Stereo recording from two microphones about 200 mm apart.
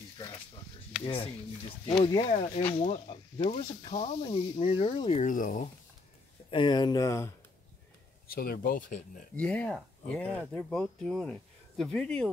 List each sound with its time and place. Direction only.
1.0 s speech: 25° left (ahead or behind)
6.5 s speech: 20° left (ahead or behind)
8.3 s speech: 50° left (ahead or behind)
9.4 s speech: 5° left (ahead or behind)